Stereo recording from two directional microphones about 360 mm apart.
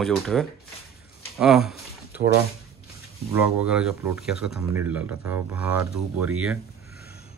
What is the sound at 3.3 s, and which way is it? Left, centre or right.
Speech, centre.